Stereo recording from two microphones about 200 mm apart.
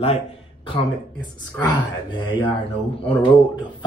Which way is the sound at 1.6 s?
25° left (ahead or behind).